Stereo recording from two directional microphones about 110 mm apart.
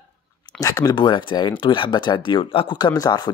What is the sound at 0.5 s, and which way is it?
Speech, 35° left (ahead or behind).